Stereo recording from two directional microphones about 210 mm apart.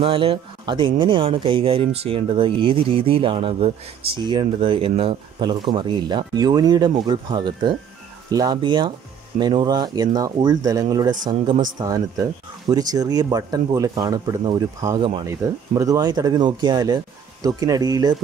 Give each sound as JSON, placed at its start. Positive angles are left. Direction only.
{"t": 0.0, "sound": "speech", "side_deg": -25}